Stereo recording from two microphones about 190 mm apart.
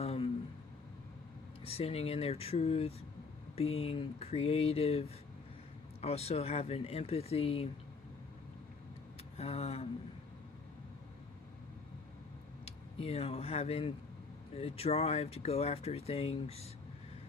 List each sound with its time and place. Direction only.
0.0 s a sound: 35° left (ahead or behind)
1.7 s speech: 30° left (ahead or behind)
9.4 s speech: 35° left (ahead or behind)
12.6 s speech: 30° left (ahead or behind)